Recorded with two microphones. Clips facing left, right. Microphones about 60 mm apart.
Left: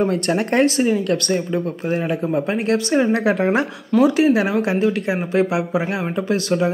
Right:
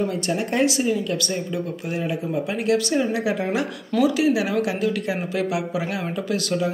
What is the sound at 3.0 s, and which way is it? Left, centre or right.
Speech, left.